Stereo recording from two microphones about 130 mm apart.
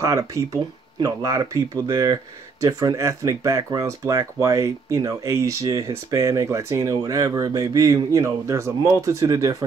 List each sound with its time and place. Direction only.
0.0 s speech: 25° right (ahead or behind)